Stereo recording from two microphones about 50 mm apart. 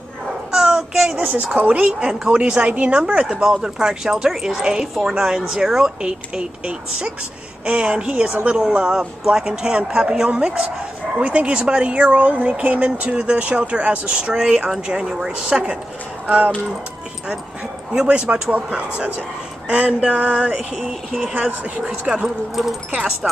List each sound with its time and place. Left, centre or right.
0.5 s a sound: centre
1.3 s speech: right
8.5 s speech: centre
16.3 s speech: right
18.0 s speech: right
20.8 s speech: centre
21.3 s speech: right
23.2 s speech: centre